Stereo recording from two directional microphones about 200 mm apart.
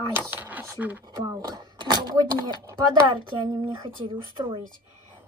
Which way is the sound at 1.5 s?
20° right (ahead or behind).